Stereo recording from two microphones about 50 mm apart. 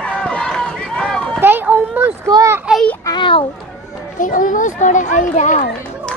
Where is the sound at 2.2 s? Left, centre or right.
Right.